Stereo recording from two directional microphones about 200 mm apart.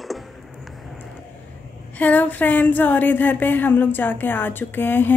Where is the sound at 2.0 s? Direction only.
10° left (ahead or behind).